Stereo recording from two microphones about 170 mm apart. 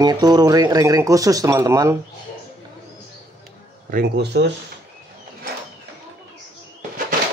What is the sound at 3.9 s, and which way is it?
Speech, 75° right (ahead or behind).